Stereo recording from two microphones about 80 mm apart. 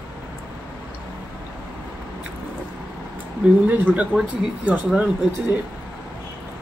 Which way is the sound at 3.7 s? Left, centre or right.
Centre.